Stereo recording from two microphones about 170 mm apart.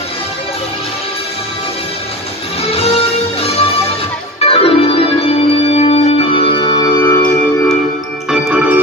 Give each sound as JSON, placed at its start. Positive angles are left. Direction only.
{"t": 2.7, "sound": "music", "side_deg": 35}
{"t": 4.4, "sound": "organ", "side_deg": 35}
{"t": 8.5, "sound": "organ", "side_deg": -10}